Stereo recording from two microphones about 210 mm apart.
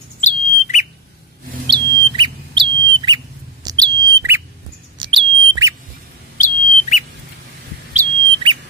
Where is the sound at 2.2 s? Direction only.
20° right (ahead or behind).